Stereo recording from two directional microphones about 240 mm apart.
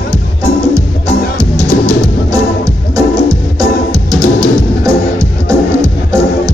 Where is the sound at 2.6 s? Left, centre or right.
Centre.